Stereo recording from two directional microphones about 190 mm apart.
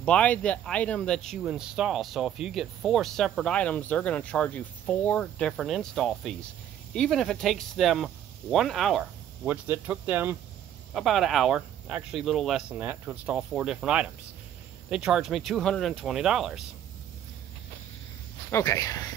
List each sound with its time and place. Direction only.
0.0 s speech: 5° left (ahead or behind); by 10.3 s 10° right (ahead or behind)
10.9 s speech: centre (ahead or behind)
18.5 s speech: 15° left (ahead or behind)